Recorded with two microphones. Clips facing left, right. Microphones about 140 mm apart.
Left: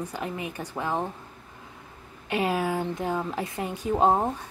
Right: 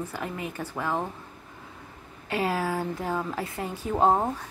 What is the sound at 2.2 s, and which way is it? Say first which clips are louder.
Speech: left 1 dB; 20° left (ahead or behind).